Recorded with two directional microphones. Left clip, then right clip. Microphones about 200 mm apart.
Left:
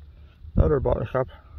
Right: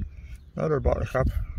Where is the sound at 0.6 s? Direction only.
15° left (ahead or behind).